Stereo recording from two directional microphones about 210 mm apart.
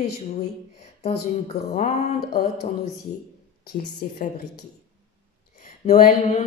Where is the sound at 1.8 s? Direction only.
30° left (ahead or behind).